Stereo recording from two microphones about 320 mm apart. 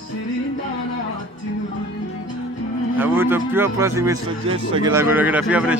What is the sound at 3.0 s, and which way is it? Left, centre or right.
Speech, centre.